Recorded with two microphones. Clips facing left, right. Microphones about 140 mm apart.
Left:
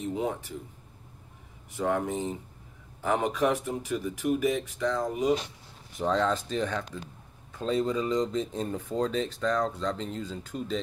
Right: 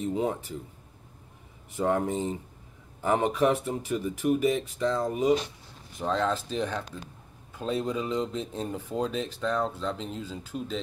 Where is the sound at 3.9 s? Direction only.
20° right (ahead or behind).